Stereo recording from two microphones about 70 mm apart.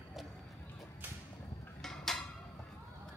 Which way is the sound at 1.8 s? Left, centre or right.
Centre.